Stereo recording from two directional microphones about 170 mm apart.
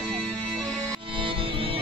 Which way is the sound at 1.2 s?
30° right (ahead or behind).